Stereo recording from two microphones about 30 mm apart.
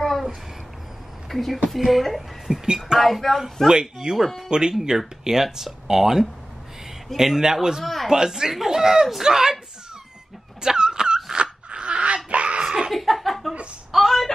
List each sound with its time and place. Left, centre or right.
1.3 s a woman's voice: centre
2.6 s speech: right
3.0 s speech: centre
4.1 s speech: right
7.8 s a woman's voice: centre
8.1 s speech: centre
8.5 s speech: centre
8.7 s speech: centre
10.6 s dog: right
11.7 s a sound: right
12.3 s laughter: right
12.9 s a sound: centre